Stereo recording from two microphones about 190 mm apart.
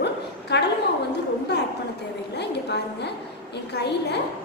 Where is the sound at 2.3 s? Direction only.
65° left (ahead or behind).